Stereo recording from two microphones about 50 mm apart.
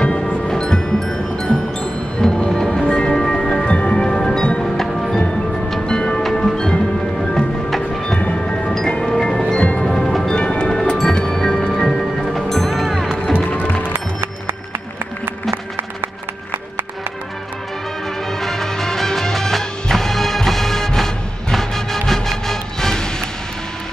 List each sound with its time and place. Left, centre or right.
0.0 s music: centre
3.7 s tubular bells: centre
4.7 s music: centre
8.7 s tubular bells: centre
10.0 s music: centre
10.3 s music: centre
13.3 s music: left
18.4 s music: centre